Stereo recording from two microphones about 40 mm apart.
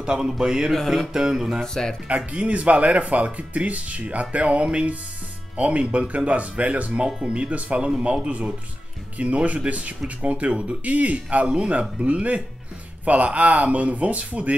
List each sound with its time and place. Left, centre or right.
0.0 s music: centre
0.7 s music: centre
1.6 s speech: centre
2.0 s a man's voice: right